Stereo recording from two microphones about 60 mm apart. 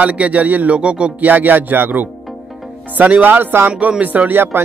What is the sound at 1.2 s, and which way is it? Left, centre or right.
Speech, right.